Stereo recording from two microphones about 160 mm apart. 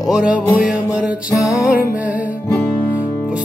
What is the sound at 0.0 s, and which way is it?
Music, 5° right (ahead or behind).